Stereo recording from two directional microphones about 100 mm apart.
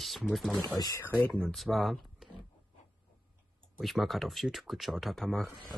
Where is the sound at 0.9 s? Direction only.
20° left (ahead or behind).